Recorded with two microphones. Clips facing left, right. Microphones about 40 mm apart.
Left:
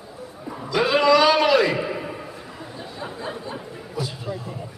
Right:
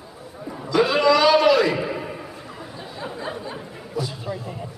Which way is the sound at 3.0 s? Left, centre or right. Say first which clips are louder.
Right 1 dB; centre.